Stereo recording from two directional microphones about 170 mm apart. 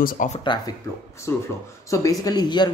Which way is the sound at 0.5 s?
25° left (ahead or behind).